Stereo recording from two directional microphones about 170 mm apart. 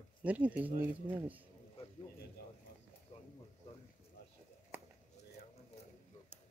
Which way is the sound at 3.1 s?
35° left (ahead or behind).